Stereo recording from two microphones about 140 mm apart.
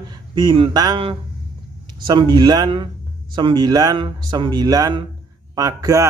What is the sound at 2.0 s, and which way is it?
Speech, 35° right (ahead or behind).